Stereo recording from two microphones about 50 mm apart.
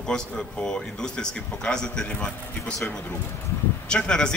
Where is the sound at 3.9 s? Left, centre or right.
Centre.